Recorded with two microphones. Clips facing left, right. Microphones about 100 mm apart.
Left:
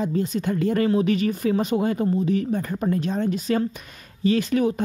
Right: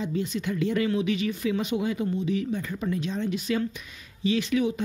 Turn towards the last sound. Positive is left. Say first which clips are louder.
# left 4 dB
turn(degrees=45)  # may be behind; listen again after turning